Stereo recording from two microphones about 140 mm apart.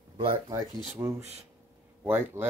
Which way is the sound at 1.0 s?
25° right (ahead or behind).